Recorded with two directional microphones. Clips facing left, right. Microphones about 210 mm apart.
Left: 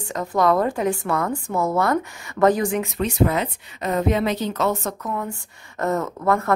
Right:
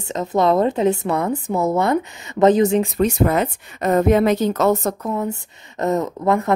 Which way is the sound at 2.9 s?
45° right (ahead or behind).